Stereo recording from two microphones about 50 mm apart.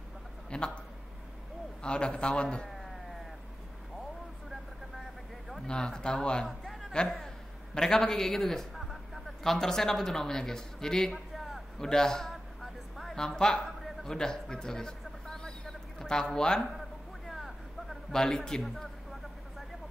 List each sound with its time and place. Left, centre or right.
0.5 s a man's voice: centre
1.8 s a man's voice: centre
5.7 s speech: centre
6.6 s a sound: centre
7.7 s a man's voice: centre
12.9 s a sound: centre
14.0 s a sound: centre
17.3 s vehicle: centre
18.1 s speech: centre